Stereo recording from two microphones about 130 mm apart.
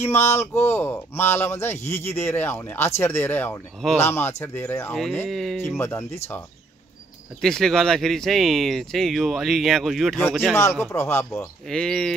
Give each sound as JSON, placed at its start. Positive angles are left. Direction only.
{"t": 0.0, "sound": "speech", "side_deg": 20}
{"t": 5.3, "sound": "speech", "side_deg": 0}
{"t": 5.8, "sound": "speech", "side_deg": 20}
{"t": 7.4, "sound": "speech", "side_deg": 5}
{"t": 10.5, "sound": "speech", "side_deg": 20}
{"t": 11.7, "sound": "speech", "side_deg": 5}